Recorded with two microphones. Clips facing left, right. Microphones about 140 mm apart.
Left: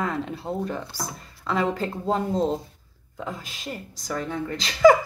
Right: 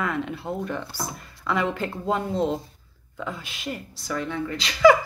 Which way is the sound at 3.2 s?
40° left (ahead or behind).